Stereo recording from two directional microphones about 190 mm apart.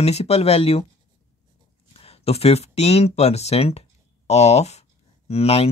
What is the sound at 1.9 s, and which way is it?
Speech, 30° left (ahead or behind).